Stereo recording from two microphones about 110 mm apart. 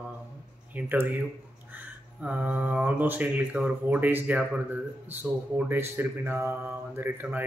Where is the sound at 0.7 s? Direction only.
15° right (ahead or behind).